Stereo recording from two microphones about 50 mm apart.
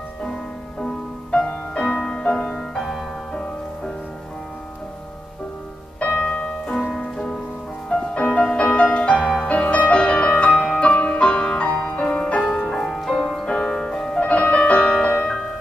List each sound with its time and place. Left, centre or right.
0.2 s music: centre
6.1 s music: centre
12.7 s music: centre
13.5 s music: centre
13.9 s music: centre
14.2 s music: left